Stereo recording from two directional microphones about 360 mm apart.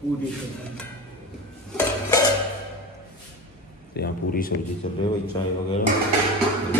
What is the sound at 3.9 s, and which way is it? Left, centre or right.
Speech, left.